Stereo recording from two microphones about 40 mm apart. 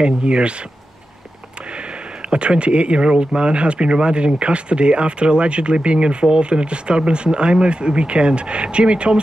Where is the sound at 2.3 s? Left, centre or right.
Right.